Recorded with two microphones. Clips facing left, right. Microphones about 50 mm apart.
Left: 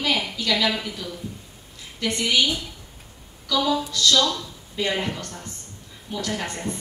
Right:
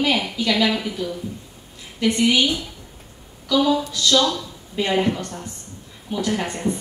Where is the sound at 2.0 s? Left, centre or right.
Centre.